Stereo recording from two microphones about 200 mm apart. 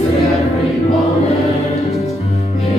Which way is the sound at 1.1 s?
30° left (ahead or behind).